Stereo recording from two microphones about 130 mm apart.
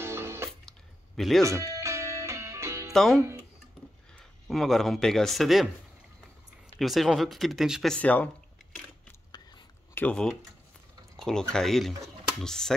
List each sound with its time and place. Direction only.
0.0 s music: 20° right (ahead or behind)
0.5 s a sound: centre (ahead or behind)
1.4 s music: 25° right (ahead or behind)
2.9 s speech: centre (ahead or behind)
4.5 s speech: centre (ahead or behind)
6.8 s speech: centre (ahead or behind)
7.9 s speech: 10° left (ahead or behind)
9.9 s speech: 10° left (ahead or behind)